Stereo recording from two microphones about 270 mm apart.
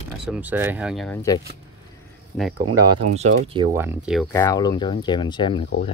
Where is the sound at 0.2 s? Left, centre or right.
Centre.